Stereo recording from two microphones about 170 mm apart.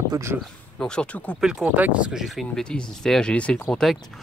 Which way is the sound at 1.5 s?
5° right (ahead or behind).